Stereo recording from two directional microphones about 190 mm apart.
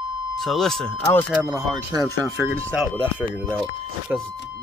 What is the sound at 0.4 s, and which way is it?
Speech, centre (ahead or behind).